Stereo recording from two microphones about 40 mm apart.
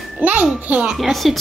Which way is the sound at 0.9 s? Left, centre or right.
Centre.